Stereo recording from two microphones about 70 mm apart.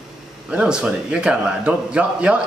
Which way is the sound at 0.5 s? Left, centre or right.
Centre.